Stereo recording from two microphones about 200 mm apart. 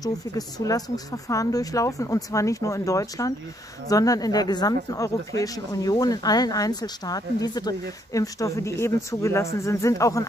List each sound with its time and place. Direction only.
0.0 s speech: 20° left (ahead or behind)